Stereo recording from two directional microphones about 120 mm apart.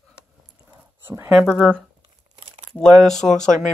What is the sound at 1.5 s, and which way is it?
Speech, 5° left (ahead or behind).